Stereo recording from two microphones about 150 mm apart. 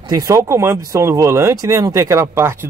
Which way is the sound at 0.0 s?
25° right (ahead or behind).